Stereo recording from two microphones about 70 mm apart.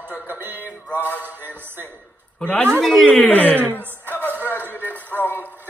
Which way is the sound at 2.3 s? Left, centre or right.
Centre.